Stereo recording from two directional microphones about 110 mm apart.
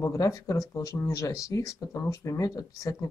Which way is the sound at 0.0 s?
30° left (ahead or behind).